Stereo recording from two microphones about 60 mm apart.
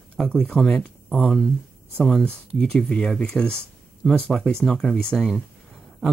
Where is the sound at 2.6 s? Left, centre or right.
Centre.